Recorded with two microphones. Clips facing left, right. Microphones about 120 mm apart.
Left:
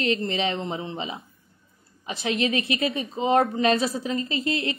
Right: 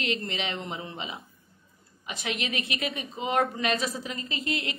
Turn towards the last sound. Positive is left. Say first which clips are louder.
# left 6 dB
turn(degrees=35)  # may be behind; listen again after turning